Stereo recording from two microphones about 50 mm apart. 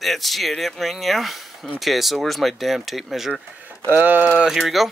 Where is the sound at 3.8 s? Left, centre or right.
Right.